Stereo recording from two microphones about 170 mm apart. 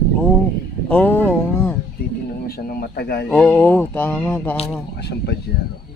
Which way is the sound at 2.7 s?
65° left (ahead or behind).